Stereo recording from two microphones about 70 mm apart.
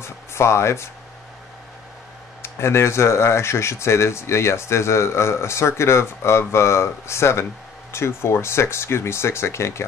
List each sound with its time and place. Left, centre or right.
0.0 s speech: left
2.4 s speech: left